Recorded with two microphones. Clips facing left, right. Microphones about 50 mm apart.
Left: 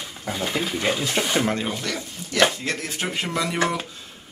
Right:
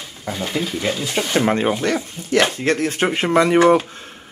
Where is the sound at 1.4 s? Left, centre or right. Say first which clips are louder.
Right 7 dB; right.